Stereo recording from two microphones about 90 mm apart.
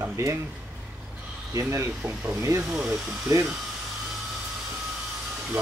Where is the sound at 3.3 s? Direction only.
40° right (ahead or behind).